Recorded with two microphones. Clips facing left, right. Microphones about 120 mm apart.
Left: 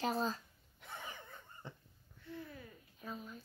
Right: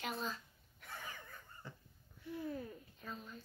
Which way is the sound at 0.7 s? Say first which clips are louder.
Left 1 dB; 25° left (ahead or behind).